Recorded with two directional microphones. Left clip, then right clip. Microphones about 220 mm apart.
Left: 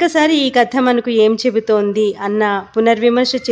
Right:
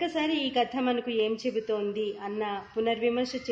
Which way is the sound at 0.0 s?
35° left (ahead or behind).